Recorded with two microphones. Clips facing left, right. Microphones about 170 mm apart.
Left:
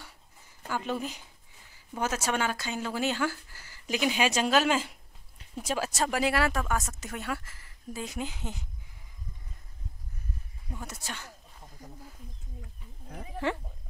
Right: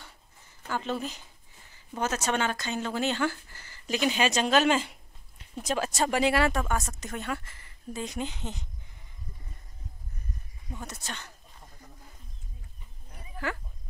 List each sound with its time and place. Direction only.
0.7 s speech: 10° left (ahead or behind)
10.7 s speech: 5° left (ahead or behind)
13.1 s a sound: 70° left (ahead or behind)